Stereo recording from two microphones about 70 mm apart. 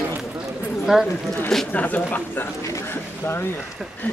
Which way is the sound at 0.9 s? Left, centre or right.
Centre.